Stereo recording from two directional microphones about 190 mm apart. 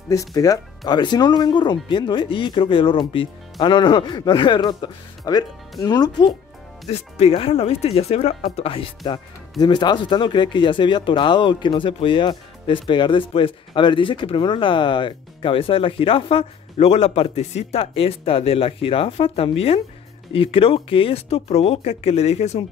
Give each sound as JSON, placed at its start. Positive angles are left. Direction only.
{"t": 0.1, "sound": "speech", "side_deg": 20}